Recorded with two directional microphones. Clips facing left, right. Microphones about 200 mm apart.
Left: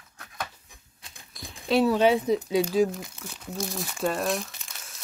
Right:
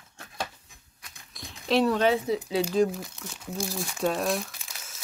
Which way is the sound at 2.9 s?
Centre (ahead or behind).